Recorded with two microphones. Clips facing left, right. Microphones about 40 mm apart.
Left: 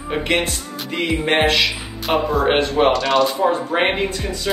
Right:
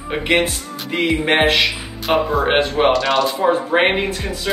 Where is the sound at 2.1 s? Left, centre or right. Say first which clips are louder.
Right 1 dB; centre.